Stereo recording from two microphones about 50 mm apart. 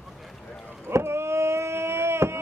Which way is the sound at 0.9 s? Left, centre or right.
Right.